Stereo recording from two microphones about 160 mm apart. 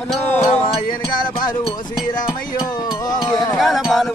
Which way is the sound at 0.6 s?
25° left (ahead or behind).